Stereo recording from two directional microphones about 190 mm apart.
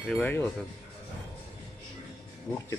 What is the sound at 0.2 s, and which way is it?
Speech, 10° left (ahead or behind).